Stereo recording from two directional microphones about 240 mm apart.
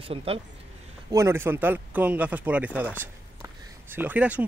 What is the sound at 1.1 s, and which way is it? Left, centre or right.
Speech, centre.